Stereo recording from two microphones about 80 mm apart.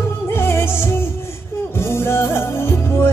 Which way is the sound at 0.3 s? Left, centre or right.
Left.